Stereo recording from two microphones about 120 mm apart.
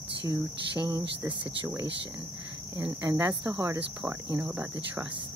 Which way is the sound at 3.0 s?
25° right (ahead or behind).